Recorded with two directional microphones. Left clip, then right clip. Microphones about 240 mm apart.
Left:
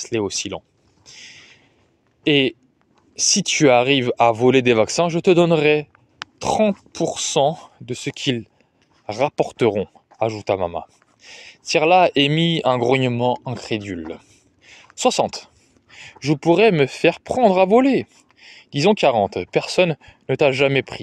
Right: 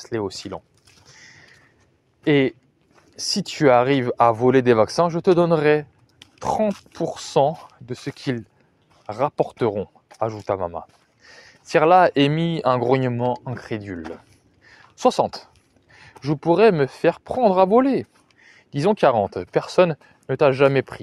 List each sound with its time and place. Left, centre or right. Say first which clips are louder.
0.0 s a sound: left 4 dB; left
2.2 s speech: left 1 dB; centre
3.2 s speech: left 6 dB; left